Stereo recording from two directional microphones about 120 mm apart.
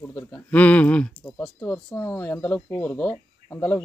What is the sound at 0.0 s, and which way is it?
Speech, 10° left (ahead or behind).